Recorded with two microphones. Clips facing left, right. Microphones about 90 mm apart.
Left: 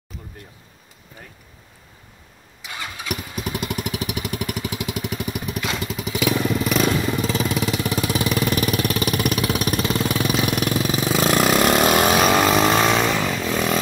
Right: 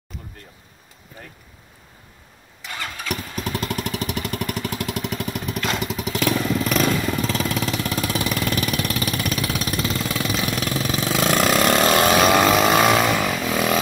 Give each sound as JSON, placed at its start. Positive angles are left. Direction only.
{"t": 2.6, "sound": "vehicle", "side_deg": 15}
{"t": 10.8, "sound": "vehicle", "side_deg": 5}